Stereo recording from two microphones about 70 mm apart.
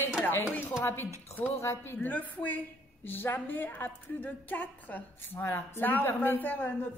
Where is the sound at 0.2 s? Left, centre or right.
Left.